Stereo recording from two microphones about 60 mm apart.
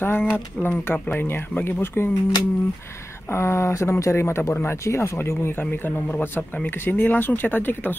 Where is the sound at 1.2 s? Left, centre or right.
Left.